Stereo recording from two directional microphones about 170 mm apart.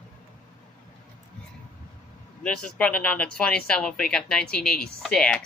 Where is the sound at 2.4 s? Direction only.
5° left (ahead or behind).